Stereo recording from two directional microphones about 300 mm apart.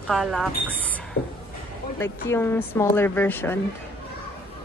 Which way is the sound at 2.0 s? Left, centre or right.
Centre.